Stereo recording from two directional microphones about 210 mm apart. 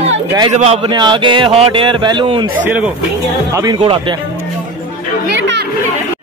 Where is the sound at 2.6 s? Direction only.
5° right (ahead or behind).